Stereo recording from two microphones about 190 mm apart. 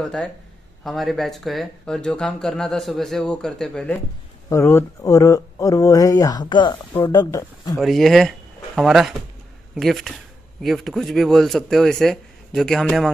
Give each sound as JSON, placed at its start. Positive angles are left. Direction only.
{"t": 0.0, "sound": "speech", "side_deg": 5}
{"t": 7.8, "sound": "speech", "side_deg": 0}